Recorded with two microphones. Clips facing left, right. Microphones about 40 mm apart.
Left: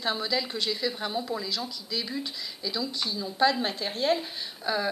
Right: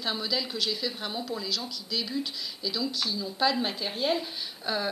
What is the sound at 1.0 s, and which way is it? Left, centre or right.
Speech, centre.